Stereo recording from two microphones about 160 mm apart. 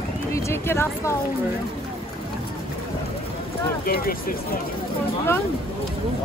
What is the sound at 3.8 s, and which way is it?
Speech, 65° left (ahead or behind).